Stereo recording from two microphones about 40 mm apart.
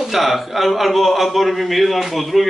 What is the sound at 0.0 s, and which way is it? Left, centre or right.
A man's voice, centre.